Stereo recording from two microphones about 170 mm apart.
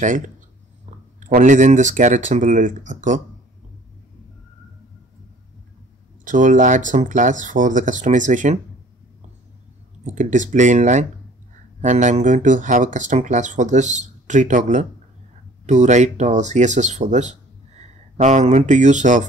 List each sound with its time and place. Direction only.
0.8 s speech: 45° right (ahead or behind)
6.2 s speech: 50° right (ahead or behind)
10.0 s speech: 45° right (ahead or behind)